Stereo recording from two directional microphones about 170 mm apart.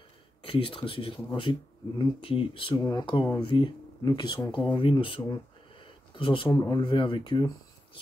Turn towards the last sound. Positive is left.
turn(degrees=30)  # may be behind; listen again after turning